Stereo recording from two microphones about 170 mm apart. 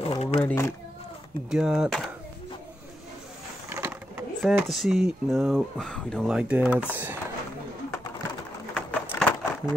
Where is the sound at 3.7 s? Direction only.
10° right (ahead or behind).